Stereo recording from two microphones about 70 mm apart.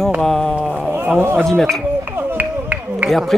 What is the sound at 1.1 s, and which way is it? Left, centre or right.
Speech, right.